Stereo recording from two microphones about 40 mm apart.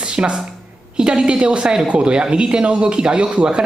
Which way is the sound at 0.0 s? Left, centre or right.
Right.